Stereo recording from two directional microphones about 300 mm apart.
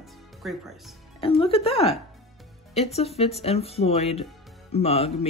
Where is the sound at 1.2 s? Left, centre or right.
Centre.